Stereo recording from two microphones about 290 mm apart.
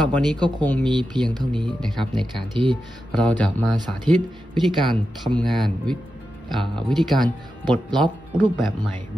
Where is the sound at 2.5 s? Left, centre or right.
Centre.